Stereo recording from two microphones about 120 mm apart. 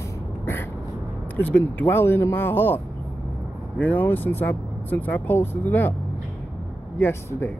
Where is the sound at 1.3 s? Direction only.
15° left (ahead or behind).